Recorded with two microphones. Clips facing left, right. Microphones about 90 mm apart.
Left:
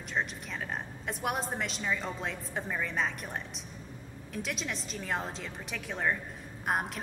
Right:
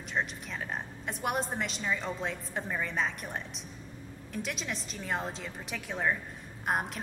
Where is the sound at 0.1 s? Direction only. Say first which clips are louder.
Even; centre (ahead or behind).